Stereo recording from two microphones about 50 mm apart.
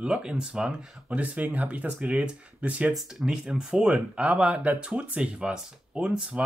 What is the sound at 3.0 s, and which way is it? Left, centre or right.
Speech, centre.